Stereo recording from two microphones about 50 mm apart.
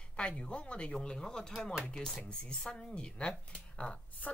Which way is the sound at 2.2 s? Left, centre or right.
Centre.